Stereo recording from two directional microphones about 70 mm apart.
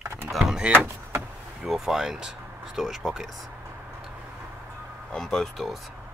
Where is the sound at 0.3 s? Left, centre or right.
Centre.